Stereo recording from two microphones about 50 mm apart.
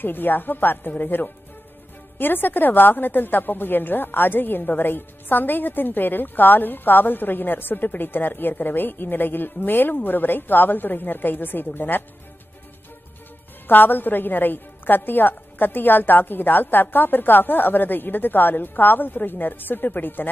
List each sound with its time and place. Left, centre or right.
0.0 s a woman's voice: left
13.7 s a woman's voice: left